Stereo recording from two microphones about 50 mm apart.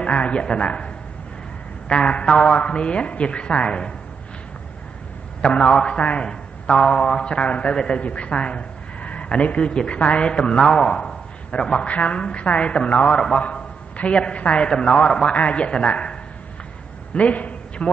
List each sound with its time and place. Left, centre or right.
0.0 s a man's voice: left
1.9 s a man's voice: left
5.4 s a man's voice: left
17.1 s a sound: left